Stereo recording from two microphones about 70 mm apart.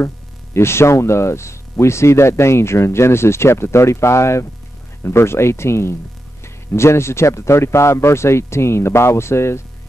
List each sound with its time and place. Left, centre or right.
0.6 s speech: left